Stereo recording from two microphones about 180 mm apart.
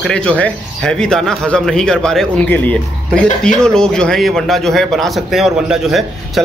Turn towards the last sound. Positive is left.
turn(degrees=0)  # may be behind; listen again after turning